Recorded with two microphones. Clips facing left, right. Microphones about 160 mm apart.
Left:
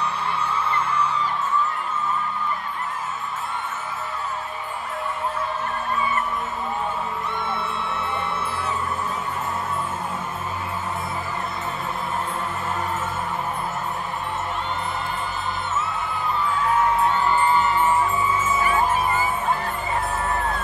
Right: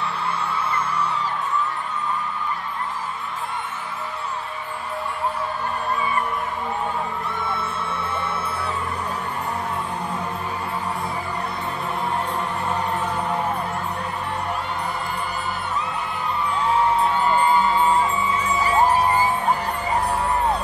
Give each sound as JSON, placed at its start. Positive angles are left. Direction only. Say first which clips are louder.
{"t": 17.3, "sound": "music", "louder": "right 1 dB", "side_deg": -15}
{"t": 18.6, "sound": "music", "louder": "right 6 dB", "side_deg": -35}